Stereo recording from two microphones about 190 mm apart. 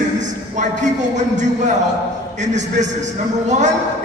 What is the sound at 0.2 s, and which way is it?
A man's voice, 40° right (ahead or behind).